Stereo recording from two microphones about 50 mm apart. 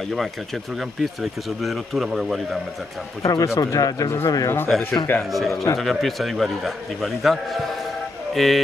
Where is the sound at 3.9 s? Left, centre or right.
Left.